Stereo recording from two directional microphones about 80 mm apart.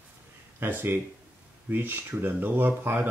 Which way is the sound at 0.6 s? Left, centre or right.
Right.